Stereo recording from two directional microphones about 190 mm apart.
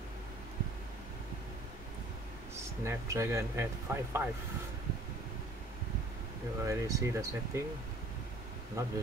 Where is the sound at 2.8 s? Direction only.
15° right (ahead or behind).